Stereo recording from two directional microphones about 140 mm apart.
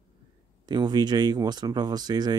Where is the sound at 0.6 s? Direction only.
30° right (ahead or behind).